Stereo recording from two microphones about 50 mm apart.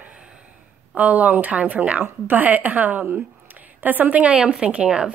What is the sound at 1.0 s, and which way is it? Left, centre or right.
A woman's voice, right.